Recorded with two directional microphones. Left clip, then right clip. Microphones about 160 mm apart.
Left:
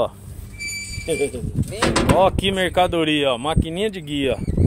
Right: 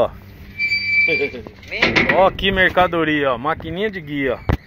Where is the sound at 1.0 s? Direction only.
40° left (ahead or behind).